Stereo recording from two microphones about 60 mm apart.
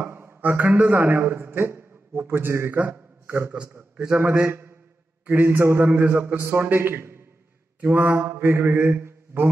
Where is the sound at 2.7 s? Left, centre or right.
Right.